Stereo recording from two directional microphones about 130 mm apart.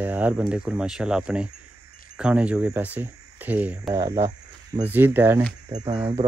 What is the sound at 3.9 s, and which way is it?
Speech, 25° right (ahead or behind).